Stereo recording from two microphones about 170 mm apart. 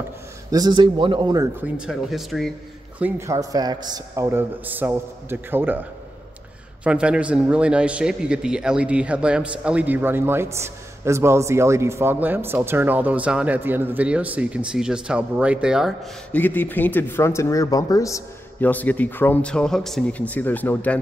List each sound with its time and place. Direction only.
0.5 s speech: 25° right (ahead or behind)
1.6 s speech: 5° right (ahead or behind)
3.0 s speech: 15° right (ahead or behind)
6.8 s speech: 5° right (ahead or behind)
16.3 s speech: 10° left (ahead or behind)